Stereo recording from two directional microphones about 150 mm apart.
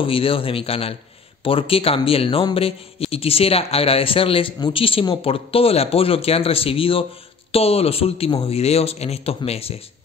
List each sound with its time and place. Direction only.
0.0 s a man's voice: 35° left (ahead or behind)